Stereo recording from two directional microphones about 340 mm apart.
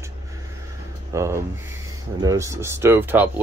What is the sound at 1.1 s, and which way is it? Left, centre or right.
Speech, centre.